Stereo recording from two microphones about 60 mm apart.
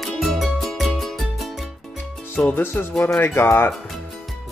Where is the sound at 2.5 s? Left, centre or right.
Left.